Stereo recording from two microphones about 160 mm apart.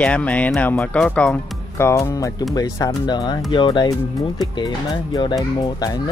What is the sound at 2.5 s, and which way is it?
Speech, 20° left (ahead or behind).